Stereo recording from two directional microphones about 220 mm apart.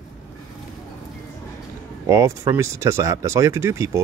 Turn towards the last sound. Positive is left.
turn(degrees=-15)  # may be behind; listen again after turning